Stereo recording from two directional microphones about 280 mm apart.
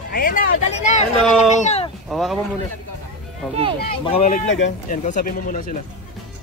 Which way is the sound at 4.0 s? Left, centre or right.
Left.